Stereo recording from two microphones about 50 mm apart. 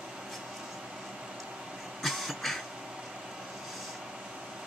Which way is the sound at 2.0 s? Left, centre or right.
Centre.